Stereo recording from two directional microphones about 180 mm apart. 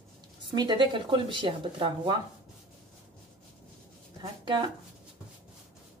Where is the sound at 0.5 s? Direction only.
25° right (ahead or behind).